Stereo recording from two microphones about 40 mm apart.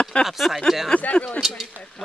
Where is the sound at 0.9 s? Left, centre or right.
Left.